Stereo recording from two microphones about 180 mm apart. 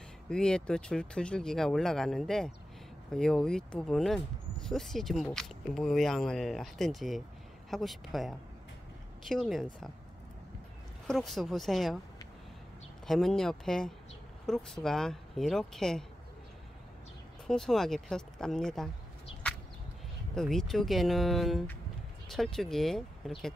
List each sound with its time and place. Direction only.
0.3 s speech: 5° left (ahead or behind)
11.1 s speech: centre (ahead or behind)
13.0 s speech: centre (ahead or behind)
17.5 s speech: centre (ahead or behind)
20.3 s speech: centre (ahead or behind)